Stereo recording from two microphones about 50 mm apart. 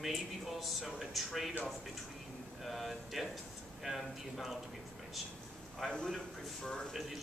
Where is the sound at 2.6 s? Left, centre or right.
Centre.